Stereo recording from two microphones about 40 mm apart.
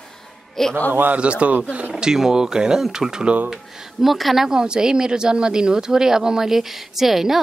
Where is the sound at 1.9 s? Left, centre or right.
Centre.